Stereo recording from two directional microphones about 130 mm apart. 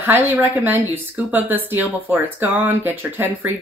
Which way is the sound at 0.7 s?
15° right (ahead or behind).